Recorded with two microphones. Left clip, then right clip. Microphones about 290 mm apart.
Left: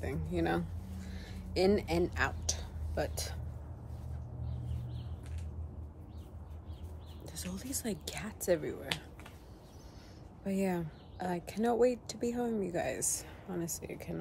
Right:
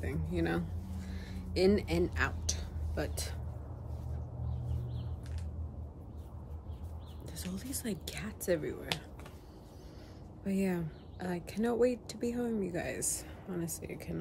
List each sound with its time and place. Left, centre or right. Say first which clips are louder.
0.0 s speech: left 1 dB; centre
0.8 s a sound: right 1 dB; centre
7.2 s speech: even; centre
10.4 s speech: left 1 dB; centre